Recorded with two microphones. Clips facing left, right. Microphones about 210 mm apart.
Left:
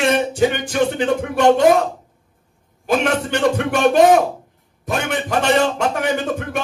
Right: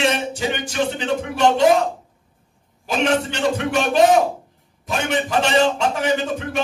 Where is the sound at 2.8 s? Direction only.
55° left (ahead or behind).